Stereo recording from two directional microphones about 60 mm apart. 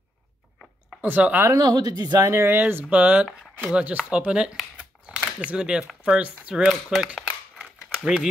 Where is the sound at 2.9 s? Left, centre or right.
Right.